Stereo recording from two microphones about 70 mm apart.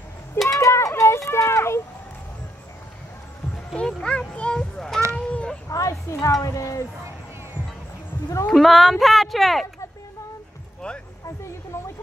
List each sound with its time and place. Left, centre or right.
0.5 s cowbell: left
3.5 s music: centre
5.1 s a sound: centre
5.7 s speech: left
8.5 s speech: centre
11.2 s speech: left